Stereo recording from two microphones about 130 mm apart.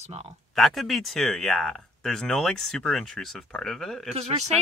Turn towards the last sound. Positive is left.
turn(degrees=-55)  # may be behind; listen again after turning